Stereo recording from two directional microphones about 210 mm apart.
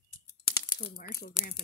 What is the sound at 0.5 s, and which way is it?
Crumpling, 15° left (ahead or behind).